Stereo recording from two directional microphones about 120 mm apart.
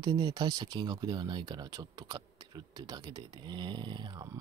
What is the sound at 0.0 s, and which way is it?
Speech, 35° right (ahead or behind).